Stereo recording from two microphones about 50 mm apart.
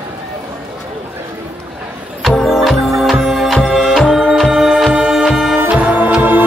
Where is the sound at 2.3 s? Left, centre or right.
Centre.